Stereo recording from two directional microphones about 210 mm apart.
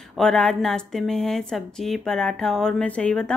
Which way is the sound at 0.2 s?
5° left (ahead or behind).